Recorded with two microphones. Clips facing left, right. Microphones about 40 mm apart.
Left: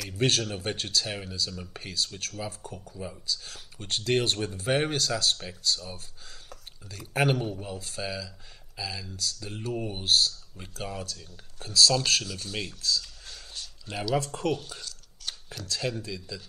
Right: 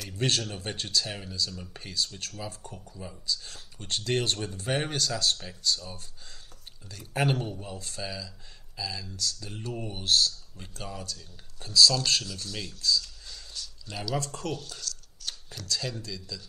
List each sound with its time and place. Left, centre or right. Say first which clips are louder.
0.2 s speech: left 3 dB; centre
1.0 s speech: left 1 dB; centre
2.6 s speech: left 3 dB; left
2.9 s speech: even; centre
7.6 s speech: left 2 dB; centre
11.6 s speech: right 1 dB; left
13.2 s a sound: even; left
14.0 s speech: left 5 dB; left